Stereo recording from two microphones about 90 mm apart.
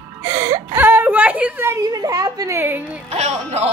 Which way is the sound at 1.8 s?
45° right (ahead or behind).